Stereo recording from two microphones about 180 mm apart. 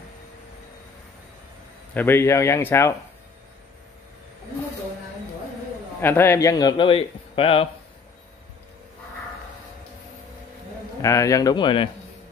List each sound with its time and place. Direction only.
2.0 s speech: 15° left (ahead or behind)
5.9 s a man's voice: 10° left (ahead or behind); by 7.6 s 30° left (ahead or behind)
11.0 s a man's voice: 15° left (ahead or behind)